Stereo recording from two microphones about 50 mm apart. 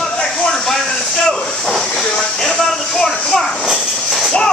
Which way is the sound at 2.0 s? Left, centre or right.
Centre.